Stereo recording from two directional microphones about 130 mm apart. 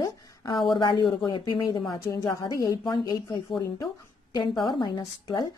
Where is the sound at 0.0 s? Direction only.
35° left (ahead or behind).